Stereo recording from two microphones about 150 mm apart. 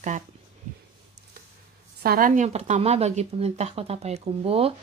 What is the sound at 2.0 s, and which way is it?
Speech, 70° right (ahead or behind).